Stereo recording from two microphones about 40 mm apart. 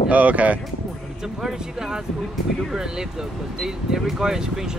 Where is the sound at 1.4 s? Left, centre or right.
Centre.